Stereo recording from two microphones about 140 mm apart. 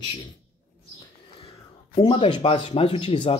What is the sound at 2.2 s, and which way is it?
Speech, 40° left (ahead or behind).